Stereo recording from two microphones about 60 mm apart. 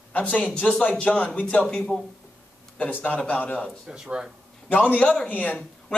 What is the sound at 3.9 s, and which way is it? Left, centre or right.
Speech, centre.